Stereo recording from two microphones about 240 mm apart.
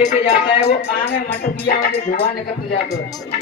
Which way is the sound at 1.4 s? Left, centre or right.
Left.